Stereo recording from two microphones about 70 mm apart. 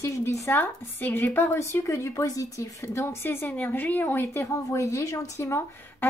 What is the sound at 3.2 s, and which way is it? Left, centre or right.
Speech, left.